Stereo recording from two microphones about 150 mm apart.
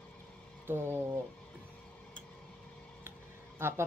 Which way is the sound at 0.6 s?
15° right (ahead or behind).